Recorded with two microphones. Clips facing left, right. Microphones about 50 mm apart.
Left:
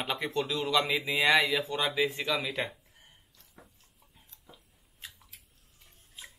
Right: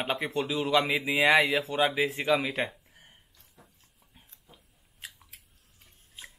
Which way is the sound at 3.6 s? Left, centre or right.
Left.